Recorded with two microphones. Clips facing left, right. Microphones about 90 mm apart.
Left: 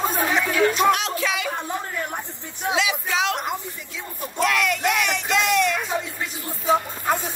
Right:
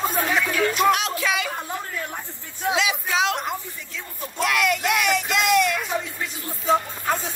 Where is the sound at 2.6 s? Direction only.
20° left (ahead or behind).